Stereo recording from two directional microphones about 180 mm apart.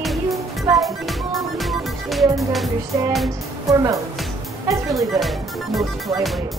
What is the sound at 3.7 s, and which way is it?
Speech, 20° right (ahead or behind).